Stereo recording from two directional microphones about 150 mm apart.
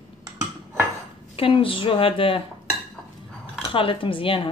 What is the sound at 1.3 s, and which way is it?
A woman's voice, 35° left (ahead or behind).